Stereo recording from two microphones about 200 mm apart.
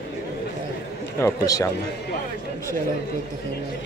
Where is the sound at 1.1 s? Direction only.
15° left (ahead or behind).